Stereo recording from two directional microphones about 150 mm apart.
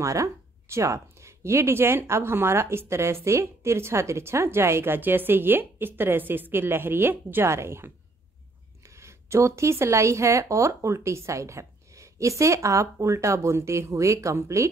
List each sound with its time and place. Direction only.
0.0 s a woman's voice: 20° right (ahead or behind)